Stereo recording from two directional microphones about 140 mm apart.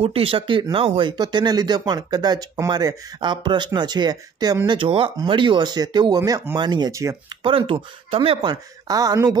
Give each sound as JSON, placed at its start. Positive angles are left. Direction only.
{"t": 0.0, "sound": "speech", "side_deg": -40}
{"t": 7.4, "sound": "speech", "side_deg": -40}